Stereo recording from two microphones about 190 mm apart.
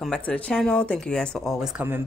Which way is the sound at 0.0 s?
5° left (ahead or behind).